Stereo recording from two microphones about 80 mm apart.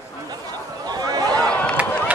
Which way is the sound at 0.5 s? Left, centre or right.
Right.